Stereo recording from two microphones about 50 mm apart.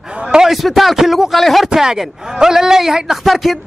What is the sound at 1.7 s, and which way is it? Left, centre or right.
A man's voice, centre.